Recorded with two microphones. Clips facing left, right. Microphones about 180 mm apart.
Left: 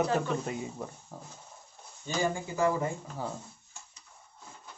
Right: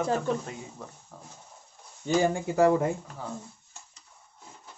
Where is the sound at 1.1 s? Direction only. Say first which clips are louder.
Left 3 dB; 15° left (ahead or behind).